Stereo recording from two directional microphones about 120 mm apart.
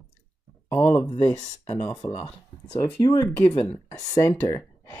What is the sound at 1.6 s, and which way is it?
Speech, 60° left (ahead or behind).